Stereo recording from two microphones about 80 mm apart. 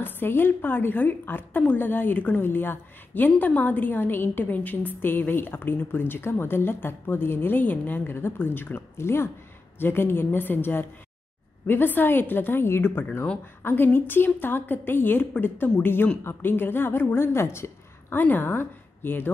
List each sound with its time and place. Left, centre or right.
0.0 s a woman's voice: left